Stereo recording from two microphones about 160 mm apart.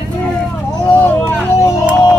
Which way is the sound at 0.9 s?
10° left (ahead or behind).